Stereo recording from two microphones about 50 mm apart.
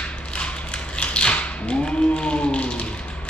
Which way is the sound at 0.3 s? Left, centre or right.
Left.